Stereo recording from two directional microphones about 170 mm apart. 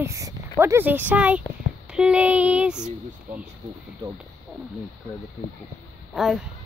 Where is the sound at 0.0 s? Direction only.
15° right (ahead or behind).